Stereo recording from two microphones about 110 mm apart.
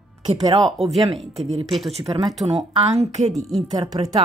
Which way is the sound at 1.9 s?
70° right (ahead or behind).